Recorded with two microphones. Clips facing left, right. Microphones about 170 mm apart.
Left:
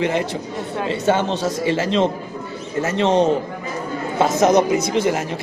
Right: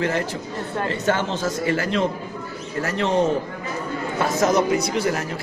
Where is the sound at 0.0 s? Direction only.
20° left (ahead or behind).